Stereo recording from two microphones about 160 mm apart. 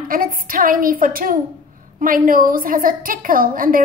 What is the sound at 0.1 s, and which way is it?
A woman's voice, 60° right (ahead or behind).